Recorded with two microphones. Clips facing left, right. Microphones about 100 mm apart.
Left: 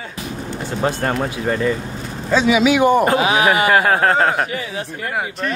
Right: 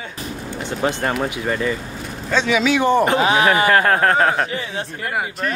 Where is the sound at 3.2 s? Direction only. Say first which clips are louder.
Even; 35° right (ahead or behind).